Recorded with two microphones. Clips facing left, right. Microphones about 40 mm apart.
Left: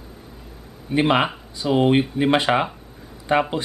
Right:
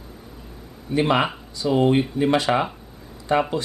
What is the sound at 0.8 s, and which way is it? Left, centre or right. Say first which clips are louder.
Speech: left 1 dB; left.